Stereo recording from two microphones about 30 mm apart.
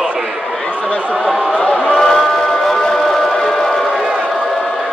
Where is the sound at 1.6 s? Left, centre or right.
Left.